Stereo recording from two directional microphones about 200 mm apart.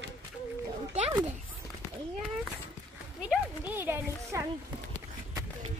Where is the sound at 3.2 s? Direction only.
5° right (ahead or behind).